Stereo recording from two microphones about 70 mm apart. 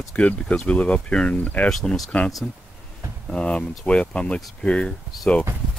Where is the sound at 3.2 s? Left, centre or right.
Centre.